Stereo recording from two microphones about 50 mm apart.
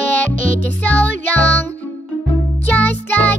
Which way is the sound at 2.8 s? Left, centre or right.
Left.